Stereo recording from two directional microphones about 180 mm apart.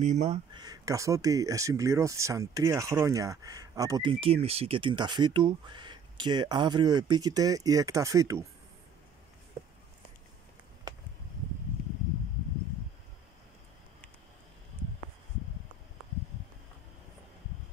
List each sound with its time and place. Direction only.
0.0 s speech: 40° right (ahead or behind)
0.6 s speech: 20° right (ahead or behind)